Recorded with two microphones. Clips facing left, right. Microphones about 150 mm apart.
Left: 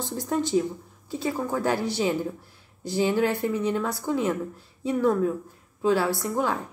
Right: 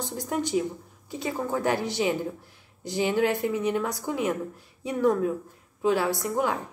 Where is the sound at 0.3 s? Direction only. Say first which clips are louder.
Left 3 dB; 15° right (ahead or behind).